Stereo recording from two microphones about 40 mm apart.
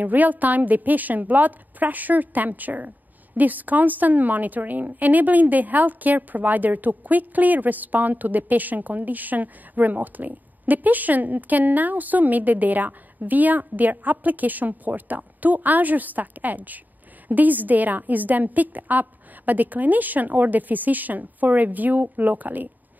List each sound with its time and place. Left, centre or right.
0.0 s a woman's voice: right